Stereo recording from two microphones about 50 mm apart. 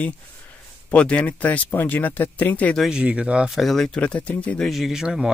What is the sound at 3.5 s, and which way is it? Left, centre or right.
Speech, centre.